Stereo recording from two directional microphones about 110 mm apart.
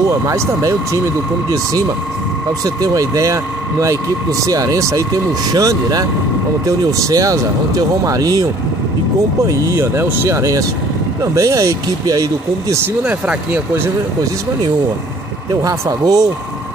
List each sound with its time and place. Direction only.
0.3 s speech: 30° right (ahead or behind)
2.6 s speech: 30° right (ahead or behind)
4.5 s speech: 30° right (ahead or behind)
9.5 s speech: 25° right (ahead or behind)
13.0 s speech: 10° right (ahead or behind)
15.6 s speech: 35° right (ahead or behind)